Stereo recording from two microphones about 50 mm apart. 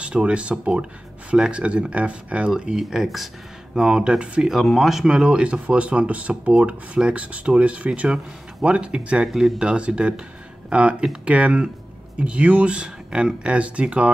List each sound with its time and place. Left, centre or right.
0.0 s speech: right
2.8 s speech: centre
3.7 s speech: centre
4.6 s speech: centre
5.0 s speech: centre
9.3 s speech: centre
9.6 s speech: right